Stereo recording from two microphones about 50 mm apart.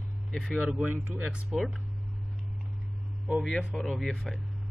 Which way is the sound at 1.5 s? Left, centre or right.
Centre.